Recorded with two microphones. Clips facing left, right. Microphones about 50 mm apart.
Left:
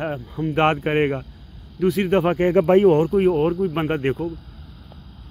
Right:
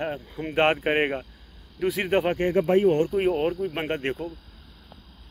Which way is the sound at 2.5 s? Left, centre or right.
Left.